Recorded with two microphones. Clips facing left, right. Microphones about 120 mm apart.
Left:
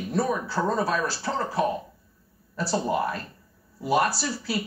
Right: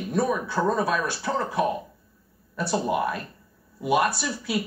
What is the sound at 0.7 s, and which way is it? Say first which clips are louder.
Speech: right 1 dB; 35° left (ahead or behind).